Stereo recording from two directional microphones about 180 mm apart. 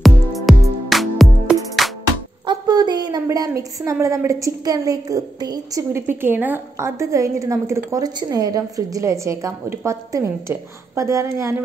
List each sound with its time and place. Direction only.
0.0 s music: centre (ahead or behind)
2.4 s a woman's voice: 25° right (ahead or behind)